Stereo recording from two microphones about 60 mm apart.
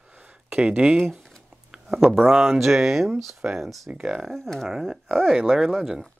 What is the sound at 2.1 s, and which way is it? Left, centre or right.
Speech, centre.